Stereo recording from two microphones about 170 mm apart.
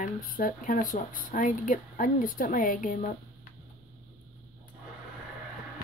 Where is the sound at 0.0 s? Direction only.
55° left (ahead or behind).